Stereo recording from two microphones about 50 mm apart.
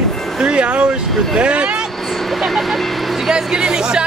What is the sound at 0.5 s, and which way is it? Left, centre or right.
Vehicle, right.